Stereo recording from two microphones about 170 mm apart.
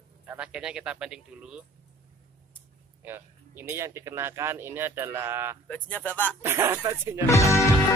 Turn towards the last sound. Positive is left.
turn(degrees=15)  # may be behind; listen again after turning